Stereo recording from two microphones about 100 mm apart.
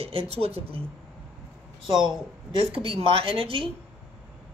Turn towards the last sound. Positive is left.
turn(degrees=-70)  # may be behind; listen again after turning